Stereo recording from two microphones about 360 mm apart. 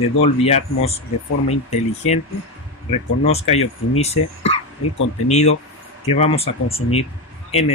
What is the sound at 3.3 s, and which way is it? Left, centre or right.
Speech, centre.